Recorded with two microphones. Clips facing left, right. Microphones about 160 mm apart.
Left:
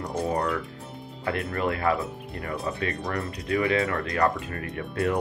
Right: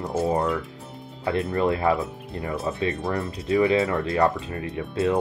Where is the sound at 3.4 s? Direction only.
25° right (ahead or behind).